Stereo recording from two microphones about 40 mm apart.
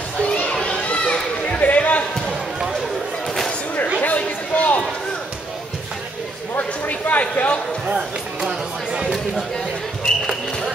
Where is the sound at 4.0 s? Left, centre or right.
Left.